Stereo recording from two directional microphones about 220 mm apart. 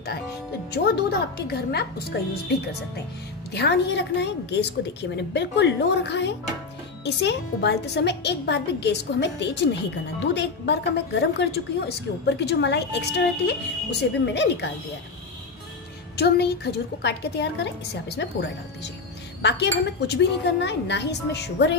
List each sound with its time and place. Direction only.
1.5 s a woman's voice: 45° left (ahead or behind)
3.5 s a woman's voice: 50° left (ahead or behind)
16.2 s a woman's voice: 50° left (ahead or behind)